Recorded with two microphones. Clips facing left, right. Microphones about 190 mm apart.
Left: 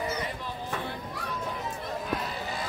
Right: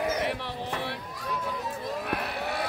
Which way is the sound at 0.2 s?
75° right (ahead or behind).